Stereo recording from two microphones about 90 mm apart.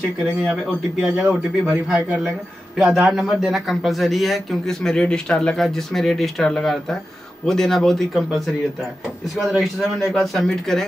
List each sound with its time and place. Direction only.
0.2 s speech: 10° right (ahead or behind)
1.6 s a man's voice: 5° right (ahead or behind)